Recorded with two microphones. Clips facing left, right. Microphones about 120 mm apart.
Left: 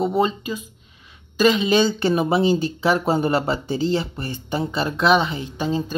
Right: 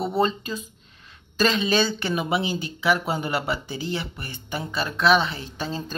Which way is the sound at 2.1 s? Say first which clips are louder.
Left 6 dB; 35° left (ahead or behind).